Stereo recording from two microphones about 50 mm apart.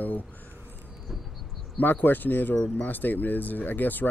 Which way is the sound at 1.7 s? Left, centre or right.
Left.